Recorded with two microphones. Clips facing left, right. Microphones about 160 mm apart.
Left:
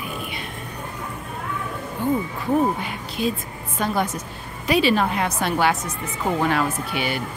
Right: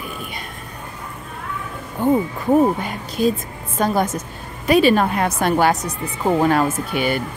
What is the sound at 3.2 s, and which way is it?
Speech, 40° right (ahead or behind).